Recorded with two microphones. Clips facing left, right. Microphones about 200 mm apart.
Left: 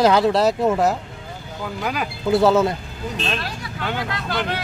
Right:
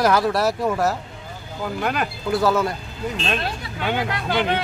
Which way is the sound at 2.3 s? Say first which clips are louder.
Left 4 dB; 25° left (ahead or behind).